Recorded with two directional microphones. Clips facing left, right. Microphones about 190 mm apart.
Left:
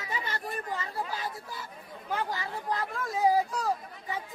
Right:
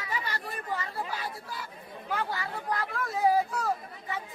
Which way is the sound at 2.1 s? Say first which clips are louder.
Even; 20° left (ahead or behind).